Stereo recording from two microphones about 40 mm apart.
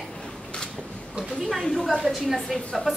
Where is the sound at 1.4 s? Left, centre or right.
Centre.